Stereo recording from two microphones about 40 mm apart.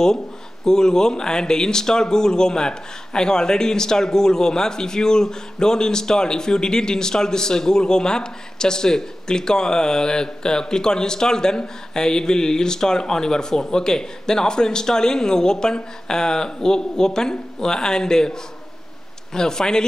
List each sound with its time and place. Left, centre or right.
0.7 s speech: centre